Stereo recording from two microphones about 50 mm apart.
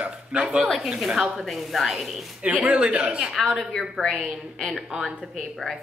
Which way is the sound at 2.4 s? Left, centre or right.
Right.